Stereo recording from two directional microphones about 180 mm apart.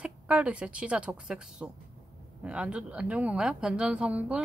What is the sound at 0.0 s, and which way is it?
Speech, 5° right (ahead or behind).